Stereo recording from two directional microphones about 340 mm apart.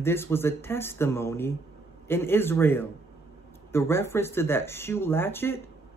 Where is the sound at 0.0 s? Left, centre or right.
Centre.